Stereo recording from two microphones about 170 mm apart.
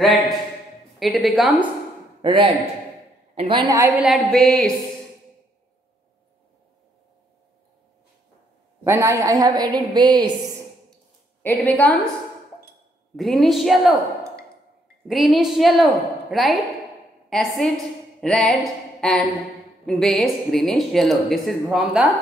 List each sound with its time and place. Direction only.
0.9 s a woman's voice: centre (ahead or behind)
2.2 s a woman's voice: 30° right (ahead or behind)
4.0 s a woman's voice: centre (ahead or behind)
8.8 s a woman's voice: 15° right (ahead or behind)
11.5 s a woman's voice: 10° left (ahead or behind)
13.1 s a woman's voice: centre (ahead or behind)
15.0 s a woman's voice: centre (ahead or behind)
18.2 s a sound: 5° left (ahead or behind)
19.9 s a woman's voice: centre (ahead or behind)